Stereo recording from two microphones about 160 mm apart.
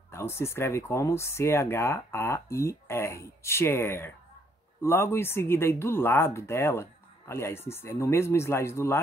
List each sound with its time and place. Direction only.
0.1 s speech: 15° left (ahead or behind)